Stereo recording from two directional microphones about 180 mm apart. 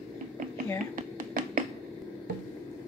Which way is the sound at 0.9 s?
50° right (ahead or behind).